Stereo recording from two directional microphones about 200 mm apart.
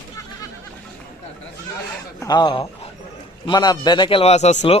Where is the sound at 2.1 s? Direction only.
20° left (ahead or behind).